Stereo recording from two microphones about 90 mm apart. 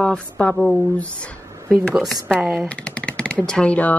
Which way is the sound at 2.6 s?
15° left (ahead or behind).